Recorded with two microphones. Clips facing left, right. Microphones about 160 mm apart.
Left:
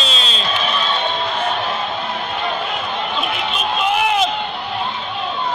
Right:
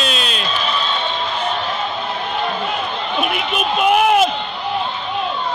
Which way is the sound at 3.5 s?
55° right (ahead or behind).